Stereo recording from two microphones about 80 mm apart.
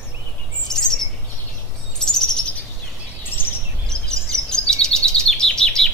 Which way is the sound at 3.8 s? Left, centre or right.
Centre.